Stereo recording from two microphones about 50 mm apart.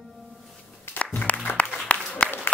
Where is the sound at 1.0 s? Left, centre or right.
Left.